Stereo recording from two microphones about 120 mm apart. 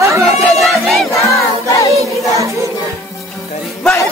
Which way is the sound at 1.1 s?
25° left (ahead or behind).